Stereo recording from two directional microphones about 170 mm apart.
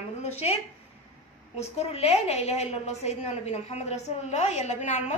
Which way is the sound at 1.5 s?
40° left (ahead or behind).